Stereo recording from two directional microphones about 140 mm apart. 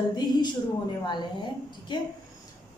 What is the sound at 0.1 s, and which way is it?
Speech, 30° left (ahead or behind).